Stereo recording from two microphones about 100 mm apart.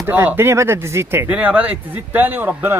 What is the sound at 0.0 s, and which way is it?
Speech, 20° right (ahead or behind).